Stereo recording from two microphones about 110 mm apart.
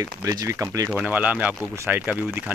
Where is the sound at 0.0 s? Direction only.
30° right (ahead or behind).